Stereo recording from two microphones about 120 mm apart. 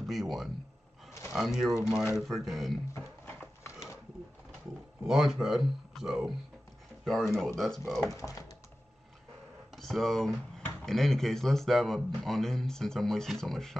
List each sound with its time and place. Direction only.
0.0 s speech: centre (ahead or behind)
5.0 s speech: 5° right (ahead or behind)
8.2 s speech: 25° left (ahead or behind)
9.8 s speech: centre (ahead or behind)